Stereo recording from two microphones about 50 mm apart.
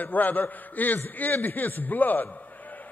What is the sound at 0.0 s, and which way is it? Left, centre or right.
A man's voice, left.